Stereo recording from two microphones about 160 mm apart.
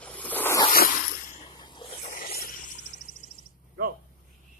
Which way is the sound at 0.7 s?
60° left (ahead or behind).